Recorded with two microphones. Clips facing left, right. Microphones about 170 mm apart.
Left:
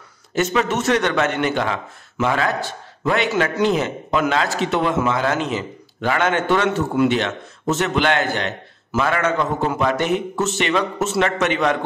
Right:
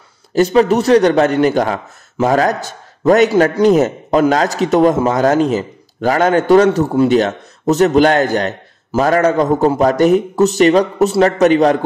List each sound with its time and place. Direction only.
0.3 s a man's voice: 35° right (ahead or behind)